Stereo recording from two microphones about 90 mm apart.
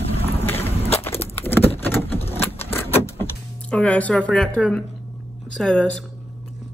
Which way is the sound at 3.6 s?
15° left (ahead or behind).